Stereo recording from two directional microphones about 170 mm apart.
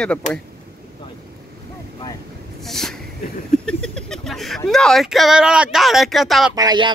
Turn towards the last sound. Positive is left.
turn(degrees=-25)  # may be behind; listen again after turning